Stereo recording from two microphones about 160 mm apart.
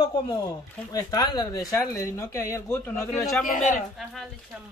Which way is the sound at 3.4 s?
55° left (ahead or behind).